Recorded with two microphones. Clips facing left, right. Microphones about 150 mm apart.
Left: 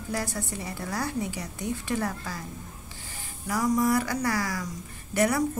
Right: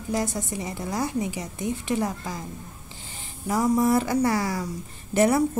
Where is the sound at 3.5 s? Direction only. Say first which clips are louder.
Right 3 dB; 25° right (ahead or behind).